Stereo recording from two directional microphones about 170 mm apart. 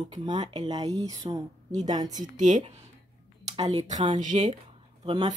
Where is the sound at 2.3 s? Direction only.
45° right (ahead or behind).